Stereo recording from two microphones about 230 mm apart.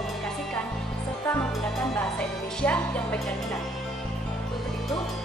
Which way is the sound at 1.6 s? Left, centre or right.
Centre.